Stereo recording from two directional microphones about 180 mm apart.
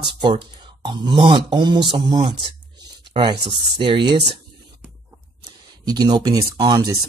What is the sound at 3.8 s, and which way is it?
Speech, 25° right (ahead or behind).